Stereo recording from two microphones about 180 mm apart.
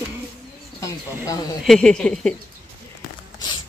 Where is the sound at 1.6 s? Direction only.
5° left (ahead or behind).